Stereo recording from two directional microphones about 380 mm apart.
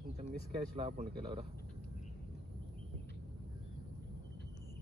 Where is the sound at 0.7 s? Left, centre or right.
Centre.